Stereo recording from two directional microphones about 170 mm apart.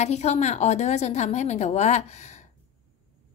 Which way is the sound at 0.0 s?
40° left (ahead or behind).